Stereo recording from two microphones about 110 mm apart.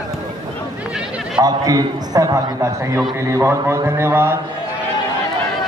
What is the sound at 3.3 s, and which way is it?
A man's voice, 25° right (ahead or behind).